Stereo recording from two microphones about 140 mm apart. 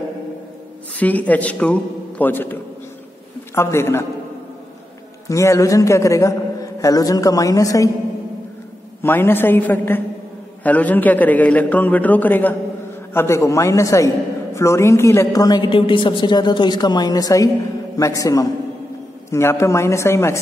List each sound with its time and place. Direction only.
0.9 s a man's voice: 10° left (ahead or behind)
5.3 s a man's voice: 20° left (ahead or behind)
9.0 s a man's voice: 15° left (ahead or behind)